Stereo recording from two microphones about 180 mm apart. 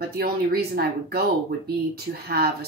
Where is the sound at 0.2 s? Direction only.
60° right (ahead or behind).